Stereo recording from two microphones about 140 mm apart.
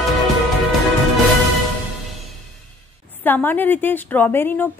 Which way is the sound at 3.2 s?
15° left (ahead or behind).